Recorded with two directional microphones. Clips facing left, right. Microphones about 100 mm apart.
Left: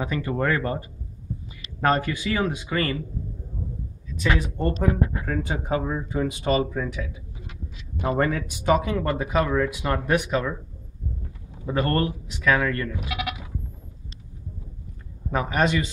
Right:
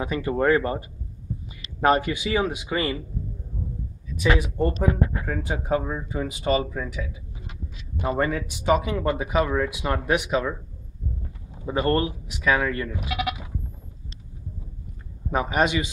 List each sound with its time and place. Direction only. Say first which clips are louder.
0.0 s speech: right 3 dB; 15° right (ahead or behind)
4.2 s speech: right 2 dB; 10° right (ahead or behind)
11.6 s speech: right 1 dB; 15° right (ahead or behind)
13.1 s sheep: right 3 dB; 10° right (ahead or behind)
15.3 s speech: even; 15° right (ahead or behind)